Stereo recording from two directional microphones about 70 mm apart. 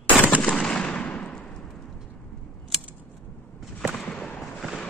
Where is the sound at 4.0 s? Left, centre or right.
Centre.